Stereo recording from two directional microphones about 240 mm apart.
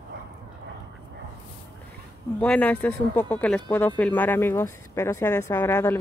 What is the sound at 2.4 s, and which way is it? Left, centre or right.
Speech, centre.